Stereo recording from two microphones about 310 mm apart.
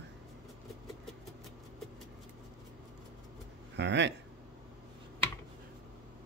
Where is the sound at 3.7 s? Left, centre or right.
Right.